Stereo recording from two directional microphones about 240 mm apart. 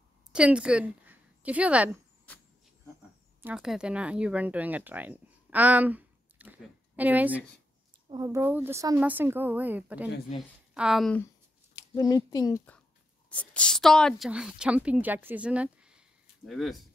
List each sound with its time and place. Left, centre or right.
0.3 s a woman's voice: centre
3.4 s a woman's voice: centre
11.7 s a woman's voice: centre